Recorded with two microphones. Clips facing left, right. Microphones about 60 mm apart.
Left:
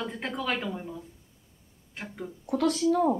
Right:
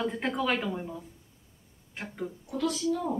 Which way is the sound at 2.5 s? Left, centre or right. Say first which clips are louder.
Left 5 dB; left.